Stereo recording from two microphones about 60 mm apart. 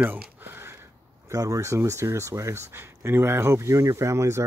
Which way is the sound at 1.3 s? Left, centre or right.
Right.